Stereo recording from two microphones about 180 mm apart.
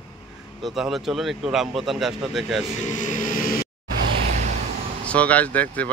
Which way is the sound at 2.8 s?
45° left (ahead or behind).